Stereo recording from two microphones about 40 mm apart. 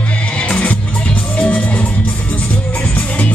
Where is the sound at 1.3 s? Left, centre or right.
Left.